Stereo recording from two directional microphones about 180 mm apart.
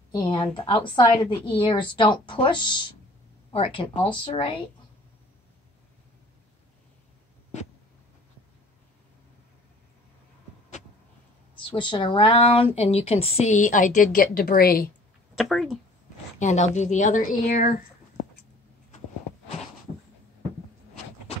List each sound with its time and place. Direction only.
0.1 s a woman's voice: 25° left (ahead or behind)
11.6 s a woman's voice: 25° left (ahead or behind); by 14.9 s 55° left (ahead or behind)
15.3 s speech: centre (ahead or behind)
16.3 s a woman's voice: 40° left (ahead or behind)